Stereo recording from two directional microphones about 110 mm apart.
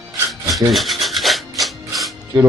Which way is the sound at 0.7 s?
Centre (ahead or behind).